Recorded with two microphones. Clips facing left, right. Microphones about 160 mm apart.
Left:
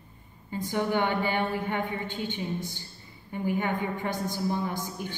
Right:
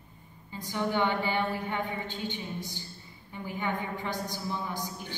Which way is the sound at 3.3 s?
50° left (ahead or behind).